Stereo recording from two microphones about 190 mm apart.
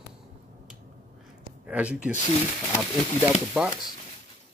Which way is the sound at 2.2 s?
20° left (ahead or behind).